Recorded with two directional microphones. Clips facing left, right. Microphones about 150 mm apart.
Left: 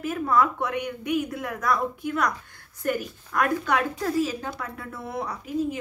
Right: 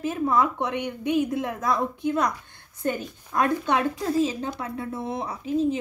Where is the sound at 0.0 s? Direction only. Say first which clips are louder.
Even; 25° right (ahead or behind).